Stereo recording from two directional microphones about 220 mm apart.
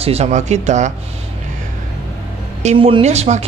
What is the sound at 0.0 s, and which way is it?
Speech, 30° right (ahead or behind).